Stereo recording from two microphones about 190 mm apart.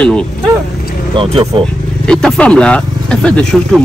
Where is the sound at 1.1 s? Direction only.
30° right (ahead or behind).